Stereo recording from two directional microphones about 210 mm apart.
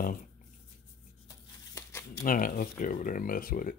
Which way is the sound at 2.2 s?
40° left (ahead or behind).